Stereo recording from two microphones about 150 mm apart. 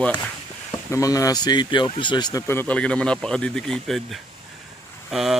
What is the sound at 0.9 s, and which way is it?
Speech, 20° left (ahead or behind).